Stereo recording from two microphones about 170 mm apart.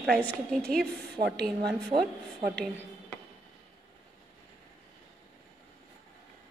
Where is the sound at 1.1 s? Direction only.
75° right (ahead or behind).